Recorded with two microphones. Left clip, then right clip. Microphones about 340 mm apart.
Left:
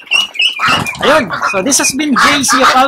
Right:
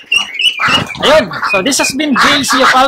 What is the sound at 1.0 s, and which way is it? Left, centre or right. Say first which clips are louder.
Speech: right 1 dB; centre.